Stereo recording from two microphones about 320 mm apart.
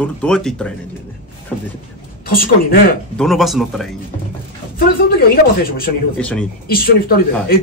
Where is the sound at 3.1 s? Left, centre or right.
Centre.